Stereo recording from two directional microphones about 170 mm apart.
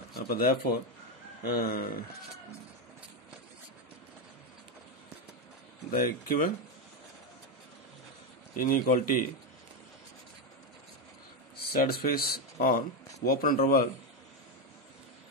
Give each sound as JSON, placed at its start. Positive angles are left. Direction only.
{"t": 0.1, "sound": "speech", "side_deg": 60}
{"t": 5.9, "sound": "speech", "side_deg": 60}
{"t": 8.5, "sound": "speech", "side_deg": 60}
{"t": 11.5, "sound": "speech", "side_deg": 65}